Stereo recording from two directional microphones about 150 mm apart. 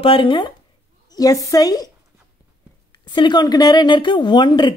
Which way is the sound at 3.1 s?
30° left (ahead or behind).